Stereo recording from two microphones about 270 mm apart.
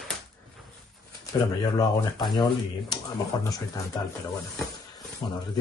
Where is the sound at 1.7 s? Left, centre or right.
Centre.